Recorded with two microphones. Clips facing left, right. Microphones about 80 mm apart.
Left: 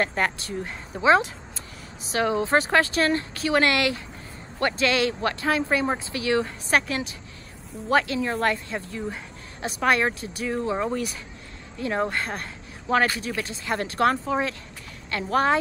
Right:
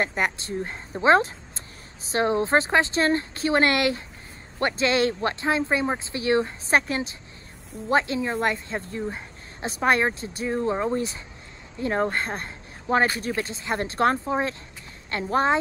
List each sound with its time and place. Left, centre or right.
0.0 s speech: centre
0.4 s speech: right
11.8 s speech: right